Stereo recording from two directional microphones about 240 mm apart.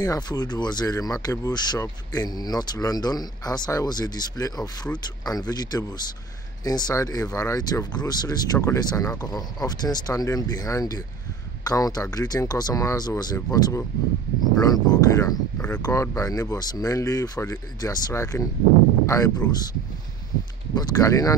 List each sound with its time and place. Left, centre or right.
0.0 s speech: centre
20.7 s speech: centre